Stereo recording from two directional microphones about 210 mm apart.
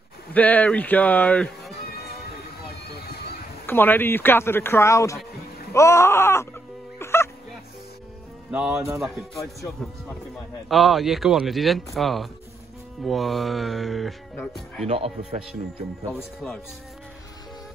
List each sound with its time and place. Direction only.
0.3 s speech: 5° left (ahead or behind)
3.6 s speech: 10° left (ahead or behind)
7.0 s music: 10° left (ahead or behind)
8.5 s a man's voice: 5° right (ahead or behind)
9.4 s speech: 15° left (ahead or behind)
10.7 s a man's voice: centre (ahead or behind)
14.9 s speech: 25° right (ahead or behind)